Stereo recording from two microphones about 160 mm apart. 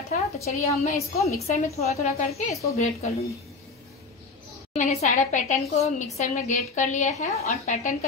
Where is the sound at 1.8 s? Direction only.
40° left (ahead or behind).